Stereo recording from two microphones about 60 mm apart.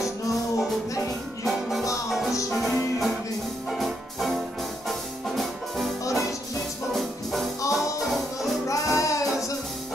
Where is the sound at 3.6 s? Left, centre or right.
Centre.